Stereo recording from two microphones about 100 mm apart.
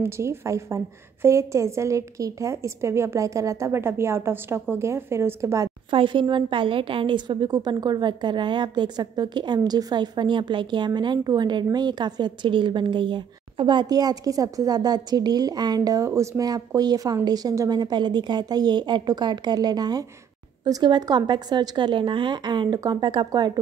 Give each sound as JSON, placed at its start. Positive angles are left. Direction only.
{"t": 0.0, "sound": "a woman's voice", "side_deg": -25}
{"t": 5.9, "sound": "a woman's voice", "side_deg": -55}